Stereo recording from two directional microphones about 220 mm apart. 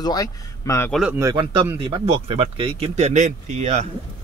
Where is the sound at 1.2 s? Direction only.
20° right (ahead or behind).